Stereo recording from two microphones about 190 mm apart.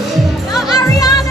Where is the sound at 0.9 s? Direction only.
20° left (ahead or behind).